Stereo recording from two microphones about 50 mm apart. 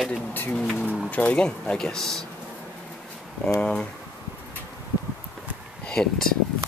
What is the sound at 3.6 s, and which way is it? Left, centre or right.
Speech, centre.